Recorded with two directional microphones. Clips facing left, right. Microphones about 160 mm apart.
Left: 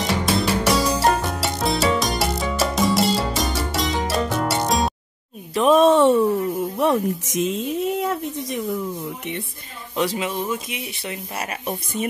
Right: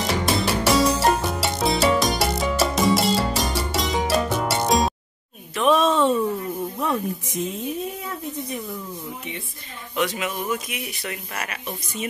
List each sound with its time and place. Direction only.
0.0 s music: centre (ahead or behind)
5.5 s a sound: 35° left (ahead or behind)
5.8 s a sound: 65° left (ahead or behind)
6.8 s speech: 80° left
9.9 s speech: 30° left (ahead or behind)
11.6 s a woman's voice: 50° left (ahead or behind)